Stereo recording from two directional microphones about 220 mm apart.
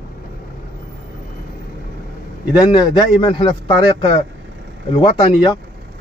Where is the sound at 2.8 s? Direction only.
20° left (ahead or behind).